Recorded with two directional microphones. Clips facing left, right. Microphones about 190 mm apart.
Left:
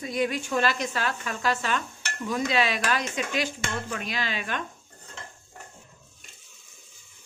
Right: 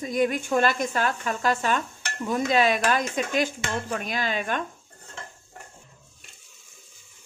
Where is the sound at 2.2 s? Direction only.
50° right (ahead or behind).